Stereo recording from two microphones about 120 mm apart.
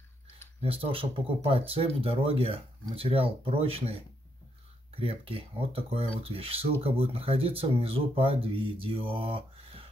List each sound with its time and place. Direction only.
0.6 s speech: 55° right (ahead or behind)